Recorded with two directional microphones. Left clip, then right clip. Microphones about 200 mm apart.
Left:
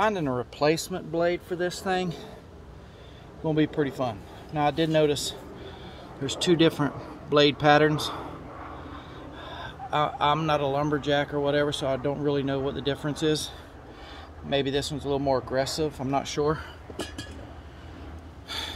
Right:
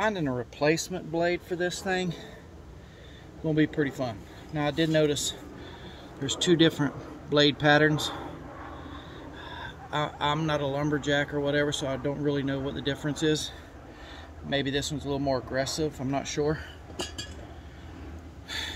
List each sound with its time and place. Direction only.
0.0 s speech: centre (ahead or behind)
1.1 s speech: 15° left (ahead or behind)
1.9 s speech: 60° left (ahead or behind)
3.4 s speech: 5° right (ahead or behind)
9.4 s speech: 5° right (ahead or behind)
16.2 s speech: 60° left (ahead or behind)